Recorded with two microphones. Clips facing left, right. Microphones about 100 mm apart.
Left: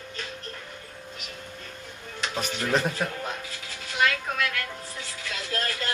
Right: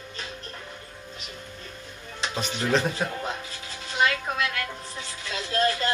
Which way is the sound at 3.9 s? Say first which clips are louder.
Right 1 dB; 20° right (ahead or behind).